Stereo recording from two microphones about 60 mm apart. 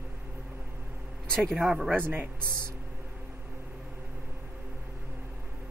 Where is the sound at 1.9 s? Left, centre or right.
Right.